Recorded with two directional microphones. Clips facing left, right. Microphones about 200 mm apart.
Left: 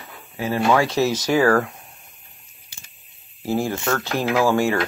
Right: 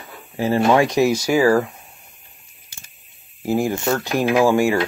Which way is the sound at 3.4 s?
15° right (ahead or behind).